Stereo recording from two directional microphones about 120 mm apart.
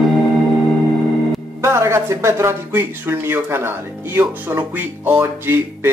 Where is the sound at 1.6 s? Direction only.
20° right (ahead or behind).